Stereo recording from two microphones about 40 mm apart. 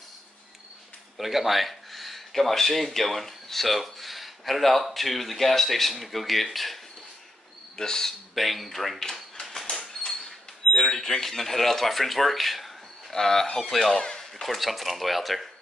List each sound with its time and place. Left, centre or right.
1.1 s speech: centre
7.7 s speech: centre
8.4 s speech: centre
9.4 s a sound: centre
10.7 s speech: centre
13.1 s speech: centre
13.9 s a sound: centre
14.4 s speech: centre